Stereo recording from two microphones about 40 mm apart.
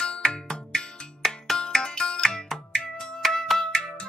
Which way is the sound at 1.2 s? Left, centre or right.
Centre.